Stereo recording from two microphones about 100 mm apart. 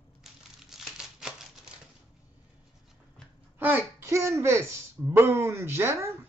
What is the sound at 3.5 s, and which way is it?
Speech, 20° right (ahead or behind).